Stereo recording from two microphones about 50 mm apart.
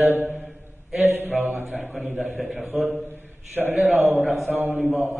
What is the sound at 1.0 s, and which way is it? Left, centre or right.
Mantra, right.